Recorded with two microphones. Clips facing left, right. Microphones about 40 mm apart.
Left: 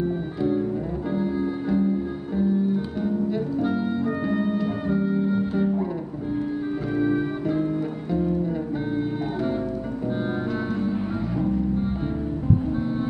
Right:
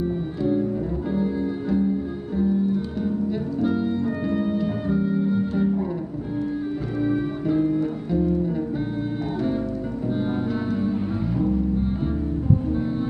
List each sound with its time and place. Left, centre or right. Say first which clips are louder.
0.0 s music: even; centre
7.0 s music: even; centre
10.7 s music: right 1 dB; centre